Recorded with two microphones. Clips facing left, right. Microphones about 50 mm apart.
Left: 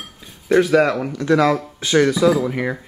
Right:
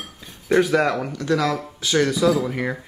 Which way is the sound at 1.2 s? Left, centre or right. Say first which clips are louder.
Left 9 dB; left.